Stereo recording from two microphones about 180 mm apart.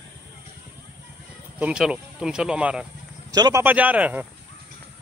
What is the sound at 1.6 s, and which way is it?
Speech, 5° right (ahead or behind).